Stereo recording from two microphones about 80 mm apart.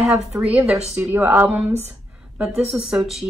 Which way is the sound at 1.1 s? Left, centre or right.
Right.